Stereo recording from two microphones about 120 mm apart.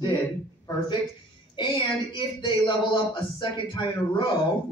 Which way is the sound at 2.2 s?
40° left (ahead or behind).